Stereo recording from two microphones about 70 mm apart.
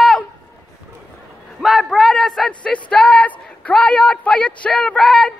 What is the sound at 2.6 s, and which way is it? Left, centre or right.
Speech, centre.